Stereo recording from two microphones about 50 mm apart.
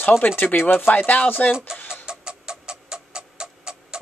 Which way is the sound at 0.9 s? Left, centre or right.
Left.